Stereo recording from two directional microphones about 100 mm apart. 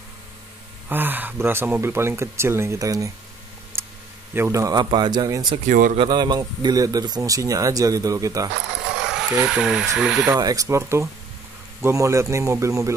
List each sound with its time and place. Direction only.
0.8 s speech: 20° right (ahead or behind); by 3.1 s 35° right (ahead or behind)
3.8 s a sound: 25° right (ahead or behind)
4.3 s speech: 30° right (ahead or behind)
8.9 s speech: 5° right (ahead or behind)
10.3 s speech: 35° right (ahead or behind)